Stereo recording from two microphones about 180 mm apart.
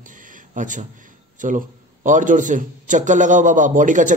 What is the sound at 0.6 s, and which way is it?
A man's voice, 45° right (ahead or behind).